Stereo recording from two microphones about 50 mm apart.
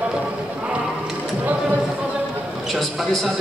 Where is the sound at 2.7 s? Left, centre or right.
Centre.